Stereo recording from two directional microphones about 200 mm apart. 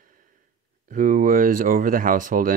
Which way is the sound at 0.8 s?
40° right (ahead or behind).